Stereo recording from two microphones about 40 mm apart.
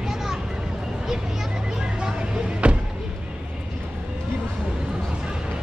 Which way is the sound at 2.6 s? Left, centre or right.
Right.